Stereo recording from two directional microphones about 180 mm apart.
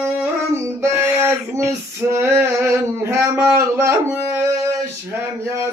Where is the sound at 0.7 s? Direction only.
15° right (ahead or behind).